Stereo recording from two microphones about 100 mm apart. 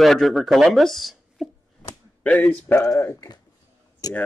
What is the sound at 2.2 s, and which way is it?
Speech, 15° left (ahead or behind).